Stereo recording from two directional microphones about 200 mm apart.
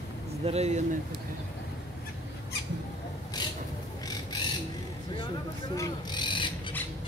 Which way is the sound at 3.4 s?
20° left (ahead or behind).